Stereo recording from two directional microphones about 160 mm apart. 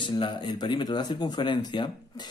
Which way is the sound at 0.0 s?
30° left (ahead or behind).